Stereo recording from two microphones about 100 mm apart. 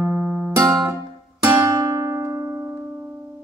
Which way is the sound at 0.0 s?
15° right (ahead or behind).